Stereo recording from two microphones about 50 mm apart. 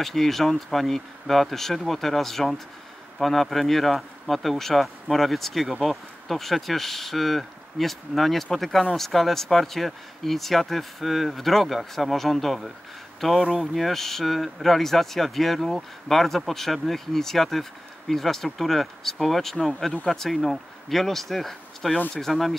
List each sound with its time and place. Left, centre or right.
0.0 s speech: centre
13.4 s speech: centre
13.7 s speech: centre